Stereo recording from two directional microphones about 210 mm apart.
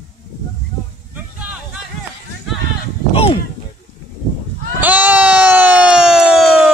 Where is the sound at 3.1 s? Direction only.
25° left (ahead or behind).